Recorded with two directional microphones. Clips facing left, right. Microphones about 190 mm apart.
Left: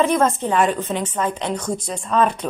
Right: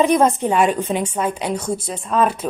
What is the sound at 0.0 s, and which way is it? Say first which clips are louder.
A woman's voice: right 3 dB; 15° right (ahead or behind).